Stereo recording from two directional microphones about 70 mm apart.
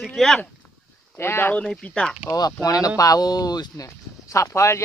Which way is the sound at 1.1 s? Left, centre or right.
Left.